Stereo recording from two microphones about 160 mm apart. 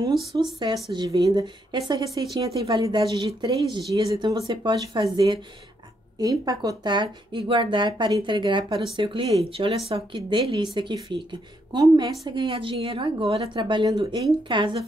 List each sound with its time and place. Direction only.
0.4 s a woman's voice: 30° right (ahead or behind)